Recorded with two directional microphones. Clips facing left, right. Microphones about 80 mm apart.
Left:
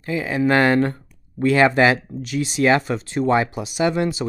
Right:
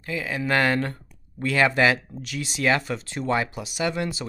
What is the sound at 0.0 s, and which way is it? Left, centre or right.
Speech, left.